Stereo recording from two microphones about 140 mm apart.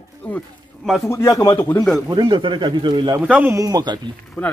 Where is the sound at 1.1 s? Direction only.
20° left (ahead or behind).